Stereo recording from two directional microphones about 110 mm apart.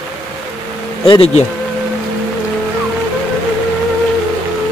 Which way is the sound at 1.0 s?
50° left (ahead or behind).